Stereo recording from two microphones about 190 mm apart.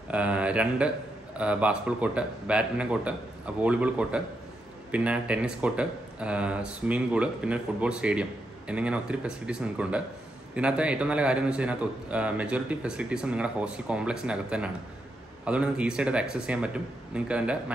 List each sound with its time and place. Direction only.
0.1 s a man's voice: 5° right (ahead or behind)